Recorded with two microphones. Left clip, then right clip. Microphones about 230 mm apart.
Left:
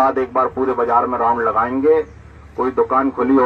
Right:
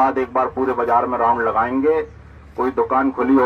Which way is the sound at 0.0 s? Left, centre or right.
Right.